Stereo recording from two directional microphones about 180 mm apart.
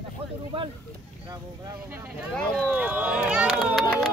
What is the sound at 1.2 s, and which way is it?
Vehicle, 15° right (ahead or behind).